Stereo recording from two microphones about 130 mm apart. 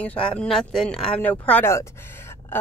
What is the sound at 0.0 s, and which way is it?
A woman's voice, 10° left (ahead or behind).